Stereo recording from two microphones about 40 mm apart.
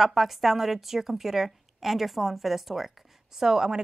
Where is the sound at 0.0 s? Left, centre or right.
Centre.